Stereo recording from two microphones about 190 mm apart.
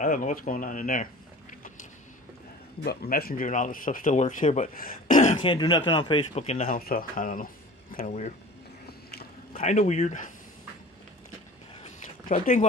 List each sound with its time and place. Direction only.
0.0 s speech: 45° left (ahead or behind)
2.8 s speech: 55° left (ahead or behind)
5.4 s a man's voice: 25° left (ahead or behind)
6.7 s speech: 50° left (ahead or behind)
8.8 s a sound: 55° left (ahead or behind)
9.6 s speech: 40° left (ahead or behind)
11.8 s a sound: 40° left (ahead or behind)